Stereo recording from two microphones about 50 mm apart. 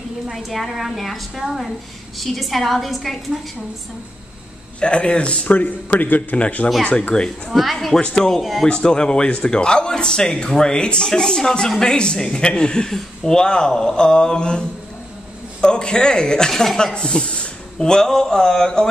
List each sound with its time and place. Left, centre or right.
0.3 s a woman's voice: centre
4.7 s a man's voice: left
5.5 s a man's voice: left
7.4 s a woman's voice: centre